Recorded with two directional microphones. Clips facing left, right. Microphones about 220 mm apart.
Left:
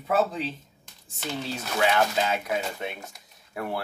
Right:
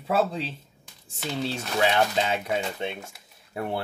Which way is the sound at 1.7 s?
30° right (ahead or behind).